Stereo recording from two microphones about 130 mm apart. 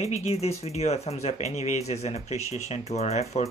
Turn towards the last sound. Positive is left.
turn(degrees=55)  # may be behind; listen again after turning